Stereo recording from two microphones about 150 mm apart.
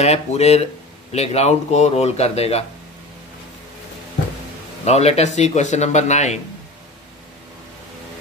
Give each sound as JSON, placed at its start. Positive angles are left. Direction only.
{"t": 0.0, "sound": "speech", "side_deg": 45}
{"t": 4.8, "sound": "speech", "side_deg": 45}